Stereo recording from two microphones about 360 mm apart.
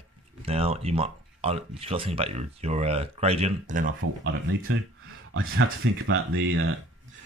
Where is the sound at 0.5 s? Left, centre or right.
Centre.